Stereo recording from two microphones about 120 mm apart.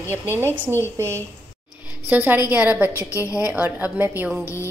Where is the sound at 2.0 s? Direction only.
15° right (ahead or behind).